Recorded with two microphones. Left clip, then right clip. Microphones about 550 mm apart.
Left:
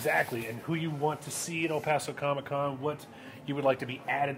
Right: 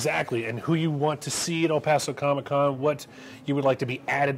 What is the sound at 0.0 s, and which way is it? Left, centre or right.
Speech, right.